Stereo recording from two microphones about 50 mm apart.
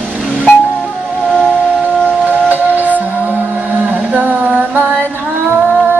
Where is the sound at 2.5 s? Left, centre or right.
Right.